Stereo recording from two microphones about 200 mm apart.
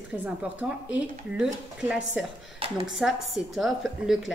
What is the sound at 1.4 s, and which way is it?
A woman's voice, 5° right (ahead or behind).